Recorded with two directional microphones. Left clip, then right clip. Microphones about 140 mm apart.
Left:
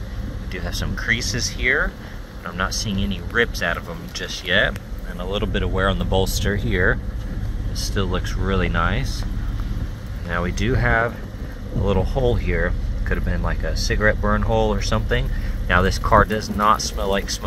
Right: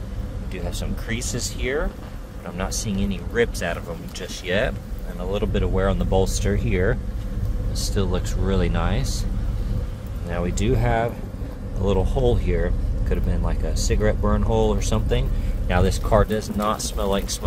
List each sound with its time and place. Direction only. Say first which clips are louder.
0.5 s speech: left 3 dB; 10° right (ahead or behind)
10.3 s speech: left 1 dB; 15° right (ahead or behind)